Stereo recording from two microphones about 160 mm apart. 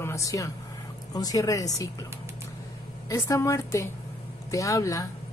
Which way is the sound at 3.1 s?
20° left (ahead or behind).